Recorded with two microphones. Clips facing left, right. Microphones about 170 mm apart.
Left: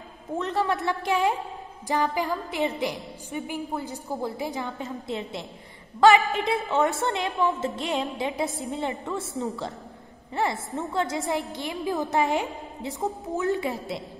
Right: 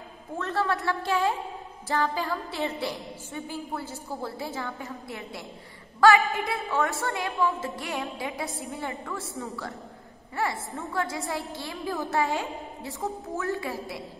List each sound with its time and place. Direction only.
0.4 s a woman's voice: 20° left (ahead or behind)